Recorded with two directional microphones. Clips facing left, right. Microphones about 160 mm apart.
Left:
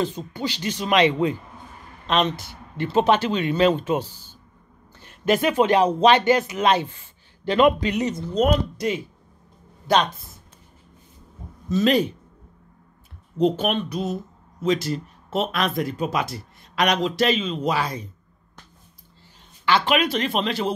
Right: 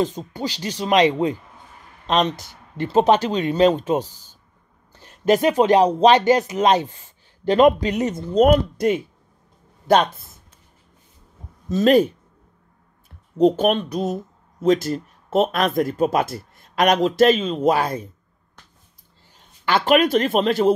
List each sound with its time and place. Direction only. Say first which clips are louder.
0.0 s speech: right 2 dB; 40° right (ahead or behind)
11.7 s speech: right 4 dB; 45° right (ahead or behind)
13.4 s speech: right 4 dB; 45° right (ahead or behind)
19.6 s speech: right 4 dB; 50° right (ahead or behind)